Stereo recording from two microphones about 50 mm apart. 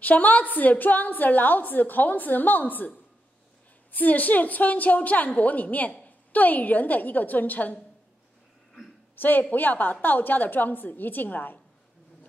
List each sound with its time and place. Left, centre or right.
0.0 s a woman's voice: left
3.9 s a woman's voice: left
9.2 s a woman's voice: left